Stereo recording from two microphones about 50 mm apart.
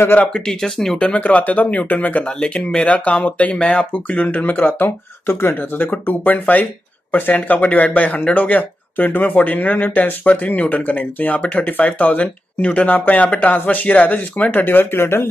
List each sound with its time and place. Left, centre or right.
0.3 s speech: centre
0.9 s speech: left
2.2 s speech: centre; by 14.6 s left
14.6 s speech: left